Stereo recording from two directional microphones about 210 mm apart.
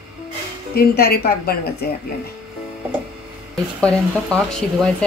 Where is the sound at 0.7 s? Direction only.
50° left (ahead or behind).